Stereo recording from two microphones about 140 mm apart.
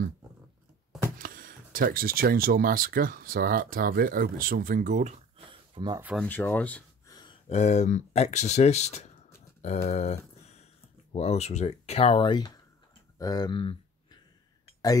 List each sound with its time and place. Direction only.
1.1 s speech: 85° right; by 5.2 s 55° right (ahead or behind)
5.5 s a sound: 35° right (ahead or behind)
6.1 s speech: 15° left (ahead or behind)
7.1 s a sound: 30° left (ahead or behind)
7.4 s speech: 50° left (ahead or behind)
11.1 s speech: 50° left (ahead or behind)